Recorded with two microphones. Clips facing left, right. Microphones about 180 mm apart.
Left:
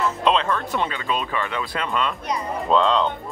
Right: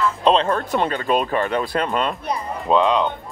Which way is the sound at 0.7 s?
50° right (ahead or behind).